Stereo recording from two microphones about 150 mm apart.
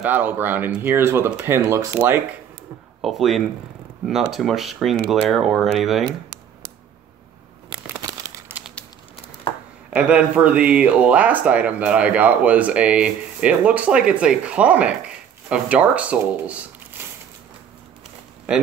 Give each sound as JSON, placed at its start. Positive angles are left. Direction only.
{"t": 0.0, "sound": "speech", "side_deg": -10}
{"t": 3.0, "sound": "speech", "side_deg": 0}
{"t": 9.9, "sound": "speech", "side_deg": -10}
{"t": 17.0, "sound": "a sound", "side_deg": -15}
{"t": 18.5, "sound": "speech", "side_deg": -5}